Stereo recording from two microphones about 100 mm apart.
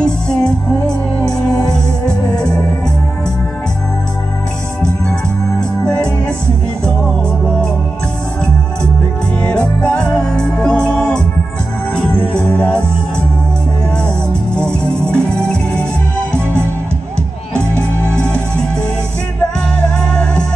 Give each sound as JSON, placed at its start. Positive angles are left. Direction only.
{"t": 0.0, "sound": "music", "side_deg": 10}
{"t": 5.6, "sound": "music", "side_deg": 10}
{"t": 9.4, "sound": "music", "side_deg": 10}
{"t": 14.0, "sound": "music", "side_deg": 10}
{"t": 17.6, "sound": "music", "side_deg": 10}